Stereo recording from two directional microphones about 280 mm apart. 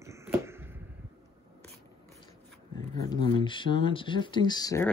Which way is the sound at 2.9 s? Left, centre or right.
Centre.